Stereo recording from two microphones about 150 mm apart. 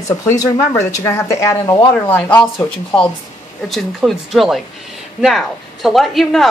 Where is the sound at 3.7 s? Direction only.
Centre (ahead or behind).